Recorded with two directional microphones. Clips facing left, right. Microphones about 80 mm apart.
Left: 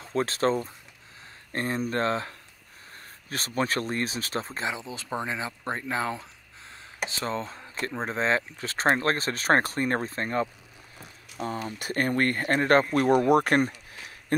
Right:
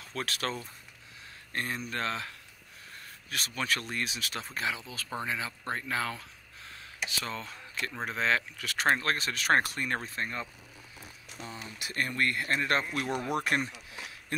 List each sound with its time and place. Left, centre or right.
0.0 s speech: left
11.3 s speech: left